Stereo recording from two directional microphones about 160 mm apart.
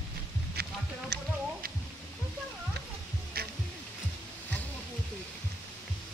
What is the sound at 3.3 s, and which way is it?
Music, 70° right (ahead or behind).